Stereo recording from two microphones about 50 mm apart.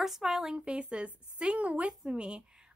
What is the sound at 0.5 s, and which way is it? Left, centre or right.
A woman's voice, right.